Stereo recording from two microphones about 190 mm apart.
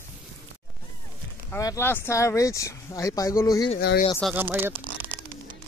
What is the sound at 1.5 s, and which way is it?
Speech, 15° left (ahead or behind).